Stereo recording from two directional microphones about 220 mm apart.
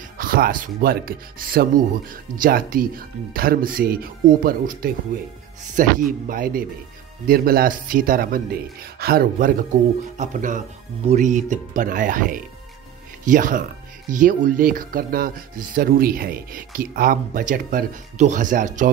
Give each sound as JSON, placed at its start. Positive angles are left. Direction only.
{"t": 0.2, "sound": "speech", "side_deg": -40}